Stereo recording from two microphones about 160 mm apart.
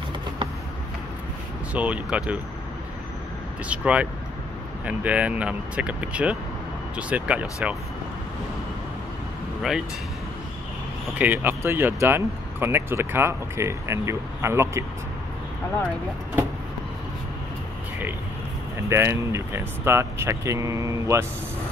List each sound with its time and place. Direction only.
1.7 s speech: 10° right (ahead or behind)
3.6 s speech: 10° right (ahead or behind)
9.6 s speech: 5° right (ahead or behind)
11.1 s speech: 10° right (ahead or behind)
18.9 s speech: 15° right (ahead or behind)